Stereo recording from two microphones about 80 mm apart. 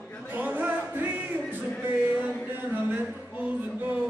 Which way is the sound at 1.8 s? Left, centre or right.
Right.